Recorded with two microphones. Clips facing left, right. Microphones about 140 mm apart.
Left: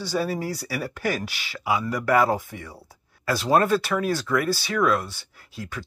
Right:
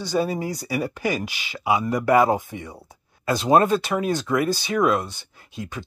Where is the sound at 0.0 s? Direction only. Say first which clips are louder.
Right 2 dB; 20° right (ahead or behind).